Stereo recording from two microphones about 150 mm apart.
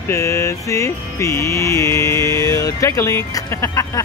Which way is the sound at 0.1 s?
20° left (ahead or behind).